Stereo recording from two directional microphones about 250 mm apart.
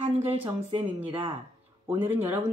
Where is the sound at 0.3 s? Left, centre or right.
Right.